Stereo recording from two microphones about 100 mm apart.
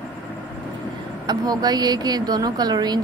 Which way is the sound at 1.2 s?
40° right (ahead or behind).